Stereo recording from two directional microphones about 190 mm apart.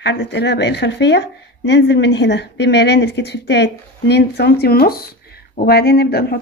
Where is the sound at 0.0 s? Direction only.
65° left (ahead or behind).